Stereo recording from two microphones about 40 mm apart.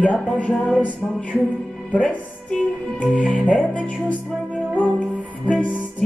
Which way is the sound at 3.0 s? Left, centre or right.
Left.